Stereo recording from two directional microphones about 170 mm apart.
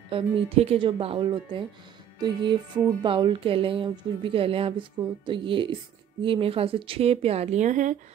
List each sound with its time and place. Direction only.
0.1 s speech: 35° right (ahead or behind)